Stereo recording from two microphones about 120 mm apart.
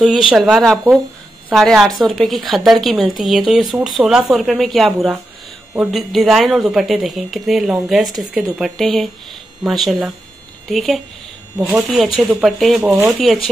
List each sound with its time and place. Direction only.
0.3 s a woman's voice: centre (ahead or behind)
11.5 s a woman's voice: 10° right (ahead or behind)
12.8 s speech: 15° right (ahead or behind)
13.2 s a woman's voice: centre (ahead or behind)